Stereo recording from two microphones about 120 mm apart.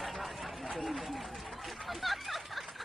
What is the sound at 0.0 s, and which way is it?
Run, centre (ahead or behind).